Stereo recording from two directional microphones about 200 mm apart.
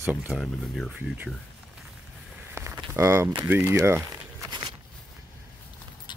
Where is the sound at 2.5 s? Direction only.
15° right (ahead or behind).